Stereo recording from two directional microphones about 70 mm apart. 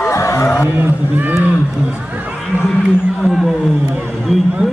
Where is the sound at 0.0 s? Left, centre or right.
Left.